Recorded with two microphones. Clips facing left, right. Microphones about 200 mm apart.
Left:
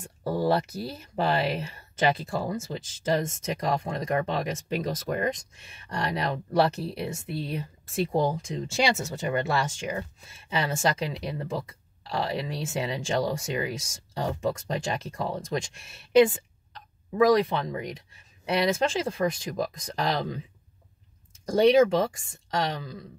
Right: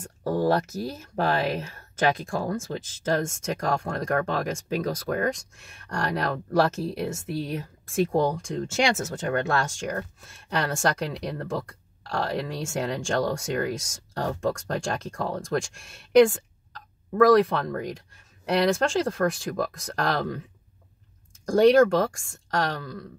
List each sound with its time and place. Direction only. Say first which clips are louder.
0.2 s speech: right 2 dB; 15° left (ahead or behind)
1.2 s speech: right 1 dB; 5° left (ahead or behind)
8.1 s speech: right 2 dB; centre (ahead or behind)
21.5 s speech: right 2 dB; centre (ahead or behind)